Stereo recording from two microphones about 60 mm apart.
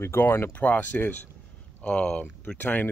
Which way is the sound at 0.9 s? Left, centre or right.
Left.